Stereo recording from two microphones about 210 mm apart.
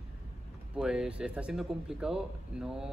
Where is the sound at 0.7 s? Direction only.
5° right (ahead or behind).